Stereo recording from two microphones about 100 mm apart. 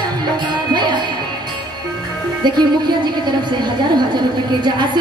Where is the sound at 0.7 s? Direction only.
50° right (ahead or behind).